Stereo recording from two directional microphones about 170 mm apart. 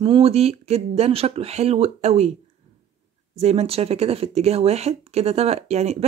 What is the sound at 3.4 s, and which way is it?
Speech, 40° right (ahead or behind).